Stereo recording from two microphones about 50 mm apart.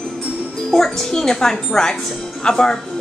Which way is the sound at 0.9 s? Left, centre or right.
Centre.